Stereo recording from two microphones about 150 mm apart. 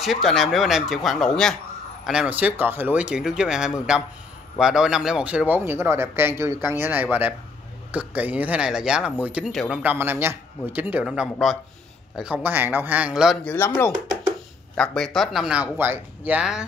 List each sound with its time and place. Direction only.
0.0 s speech: centre (ahead or behind)
2.0 s a man's voice: 5° right (ahead or behind)
9.8 s a man's voice: 15° right (ahead or behind)
13.4 s speech: 10° left (ahead or behind)
15.1 s a man's voice: 5° right (ahead or behind)